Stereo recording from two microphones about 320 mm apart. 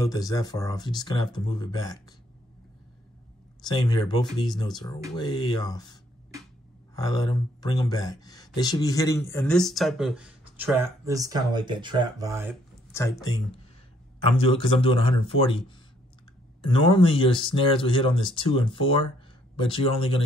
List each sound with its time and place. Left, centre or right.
0.0 s speech: centre
3.6 s speech: centre
7.0 s speech: centre
12.9 s speech: centre
16.6 s speech: centre